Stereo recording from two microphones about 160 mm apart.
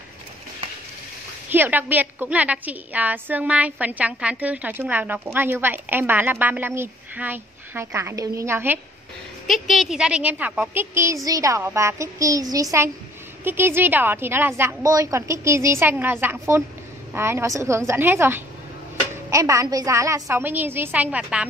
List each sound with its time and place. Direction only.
1.5 s a woman's voice: 10° right (ahead or behind)
9.5 s a woman's voice: centre (ahead or behind)